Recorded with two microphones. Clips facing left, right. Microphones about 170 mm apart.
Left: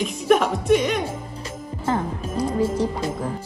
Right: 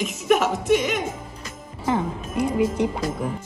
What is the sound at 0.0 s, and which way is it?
Speech, 5° right (ahead or behind).